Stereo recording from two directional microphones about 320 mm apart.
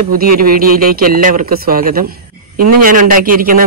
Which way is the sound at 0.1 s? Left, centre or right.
Right.